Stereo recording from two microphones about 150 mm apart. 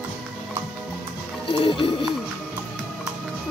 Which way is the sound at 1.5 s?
35° left (ahead or behind).